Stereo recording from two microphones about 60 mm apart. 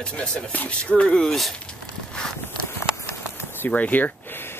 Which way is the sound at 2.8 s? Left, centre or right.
Left.